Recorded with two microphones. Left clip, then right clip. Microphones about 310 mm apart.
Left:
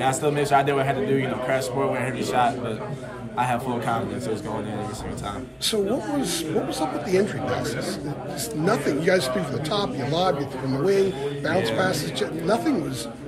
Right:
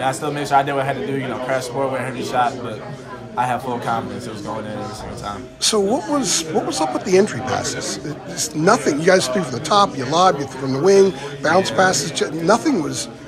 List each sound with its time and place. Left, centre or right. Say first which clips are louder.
0.0 s a man's voice: right 1 dB; centre
5.6 s a man's voice: right 6 dB; centre
8.4 s a man's voice: right 8 dB; centre